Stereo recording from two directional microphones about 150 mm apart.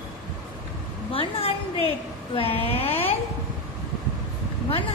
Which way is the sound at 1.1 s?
40° left (ahead or behind).